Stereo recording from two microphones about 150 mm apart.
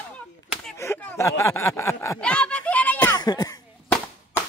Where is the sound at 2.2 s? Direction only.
5° left (ahead or behind).